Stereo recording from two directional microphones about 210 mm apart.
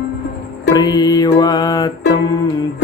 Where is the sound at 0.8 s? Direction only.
20° left (ahead or behind).